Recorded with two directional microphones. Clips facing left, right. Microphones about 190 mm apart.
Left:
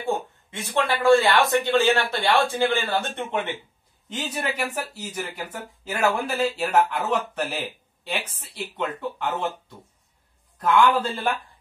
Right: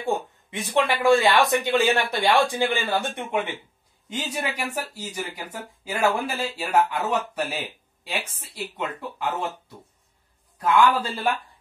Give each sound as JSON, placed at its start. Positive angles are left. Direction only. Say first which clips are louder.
{"t": 0.0, "sound": "speech", "louder": "even", "side_deg": -15}
{"t": 5.9, "sound": "speech", "louder": "even", "side_deg": -10}
{"t": 10.6, "sound": "speech", "louder": "even", "side_deg": -10}